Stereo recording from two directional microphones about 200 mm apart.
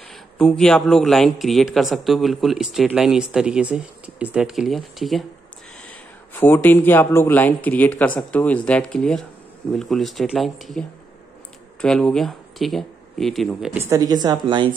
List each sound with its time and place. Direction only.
0.1 s speech: 5° left (ahead or behind)
13.7 s speech: 15° right (ahead or behind)